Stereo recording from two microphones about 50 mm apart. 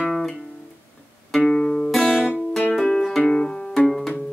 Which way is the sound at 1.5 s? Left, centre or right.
Left.